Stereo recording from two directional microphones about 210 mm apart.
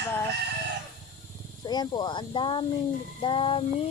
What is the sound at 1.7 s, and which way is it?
Child singing, 20° left (ahead or behind).